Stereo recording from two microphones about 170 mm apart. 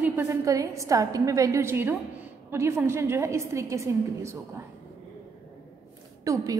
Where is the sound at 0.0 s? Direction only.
15° right (ahead or behind).